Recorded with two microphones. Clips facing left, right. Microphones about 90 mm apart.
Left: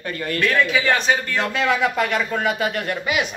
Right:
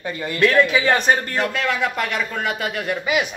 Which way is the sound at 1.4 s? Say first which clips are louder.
Left 1 dB; centre (ahead or behind).